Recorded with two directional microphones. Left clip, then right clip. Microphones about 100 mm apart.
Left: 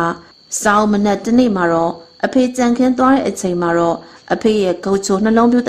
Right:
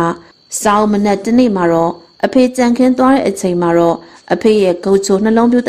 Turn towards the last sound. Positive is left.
turn(degrees=-20)  # may be behind; listen again after turning